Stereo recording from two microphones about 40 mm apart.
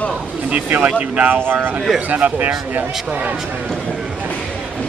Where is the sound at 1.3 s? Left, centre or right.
Right.